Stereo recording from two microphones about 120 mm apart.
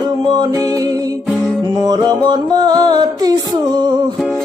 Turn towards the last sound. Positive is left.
turn(degrees=-35)  # may be behind; listen again after turning